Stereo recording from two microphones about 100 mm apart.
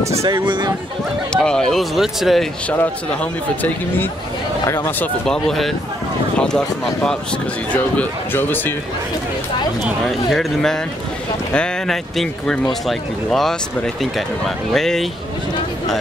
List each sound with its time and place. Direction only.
0.3 s speech: 50° right (ahead or behind)
1.3 s speech: 10° left (ahead or behind)
5.2 s speech: 5° left (ahead or behind); by 8.7 s 20° left (ahead or behind)
10.0 s speech: 5° left (ahead or behind)